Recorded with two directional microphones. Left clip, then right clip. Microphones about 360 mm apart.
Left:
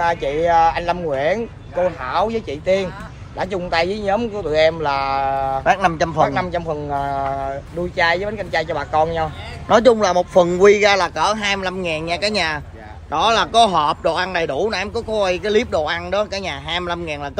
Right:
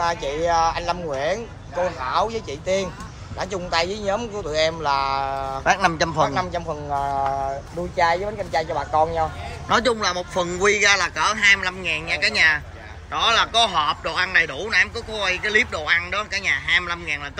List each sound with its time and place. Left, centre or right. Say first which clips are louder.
0.0 s speech: left 4 dB; left
5.7 s a man's voice: left 1 dB; centre
6.3 s speech: left 3 dB; left
6.6 s a man's voice: left 3 dB; left
7.0 s speech: right 1 dB; left
9.7 s a man's voice: left 7 dB; centre